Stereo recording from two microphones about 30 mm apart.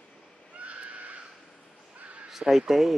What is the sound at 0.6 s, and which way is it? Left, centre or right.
Neigh, right.